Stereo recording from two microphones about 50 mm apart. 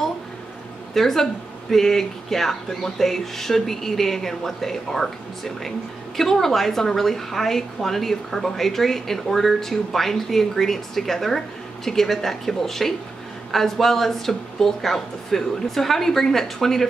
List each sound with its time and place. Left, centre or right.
0.9 s a woman's voice: centre